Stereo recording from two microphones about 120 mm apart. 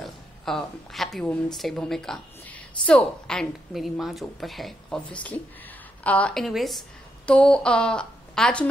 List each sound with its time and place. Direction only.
0.0 s a woman's voice: centre (ahead or behind)